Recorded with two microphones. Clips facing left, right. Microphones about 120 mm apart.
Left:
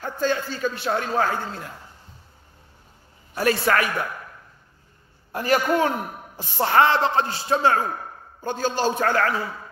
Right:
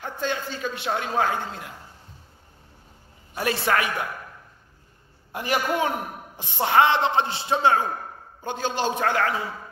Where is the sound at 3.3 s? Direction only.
20° right (ahead or behind).